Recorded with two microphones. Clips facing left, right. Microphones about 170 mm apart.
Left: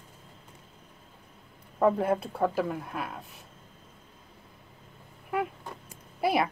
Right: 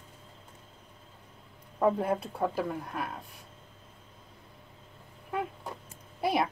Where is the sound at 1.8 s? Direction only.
Centre (ahead or behind).